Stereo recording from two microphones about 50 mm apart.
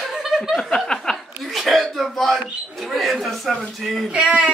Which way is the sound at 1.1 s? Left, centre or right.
Centre.